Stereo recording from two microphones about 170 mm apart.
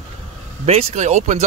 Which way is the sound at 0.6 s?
40° right (ahead or behind).